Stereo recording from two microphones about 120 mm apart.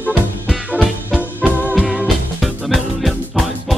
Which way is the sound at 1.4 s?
Centre (ahead or behind).